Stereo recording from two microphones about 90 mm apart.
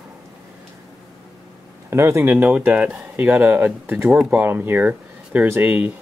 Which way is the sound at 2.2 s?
15° right (ahead or behind).